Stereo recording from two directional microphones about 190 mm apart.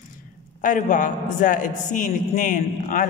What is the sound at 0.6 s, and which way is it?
A man's voice, 40° left (ahead or behind).